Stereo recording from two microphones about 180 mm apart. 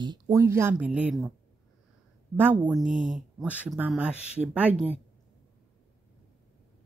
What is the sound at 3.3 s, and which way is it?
Speech, 5° right (ahead or behind).